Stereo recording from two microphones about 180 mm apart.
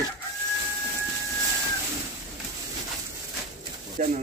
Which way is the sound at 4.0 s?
45° right (ahead or behind).